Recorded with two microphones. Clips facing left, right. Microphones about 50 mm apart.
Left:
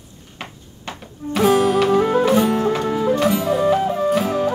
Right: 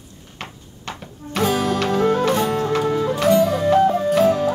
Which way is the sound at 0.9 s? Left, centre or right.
Centre.